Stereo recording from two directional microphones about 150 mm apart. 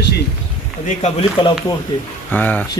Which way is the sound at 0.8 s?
40° left (ahead or behind).